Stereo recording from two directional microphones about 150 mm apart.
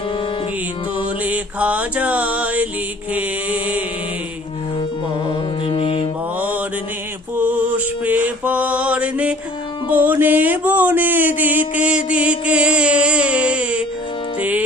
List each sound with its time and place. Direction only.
1.2 s mantra: 10° right (ahead or behind)
5.7 s music: 40° left (ahead or behind)
7.3 s music: 10° right (ahead or behind)